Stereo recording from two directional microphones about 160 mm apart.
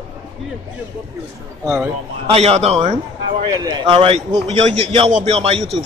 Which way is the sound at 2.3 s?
40° right (ahead or behind).